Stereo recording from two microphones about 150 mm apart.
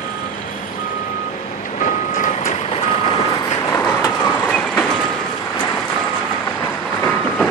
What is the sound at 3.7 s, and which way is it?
Vehicle, 20° left (ahead or behind).